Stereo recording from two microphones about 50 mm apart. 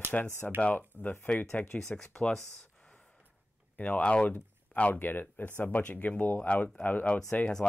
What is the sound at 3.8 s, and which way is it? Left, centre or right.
Speech, left.